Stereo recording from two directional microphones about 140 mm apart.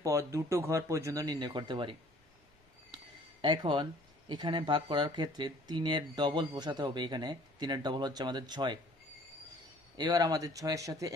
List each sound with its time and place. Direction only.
0.0 s speech: 25° right (ahead or behind)
2.9 s a sound: 35° right (ahead or behind)
4.3 s speech: 35° right (ahead or behind)
9.9 s speech: 30° right (ahead or behind)